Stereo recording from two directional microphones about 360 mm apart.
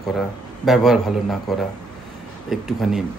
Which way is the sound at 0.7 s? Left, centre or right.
Centre.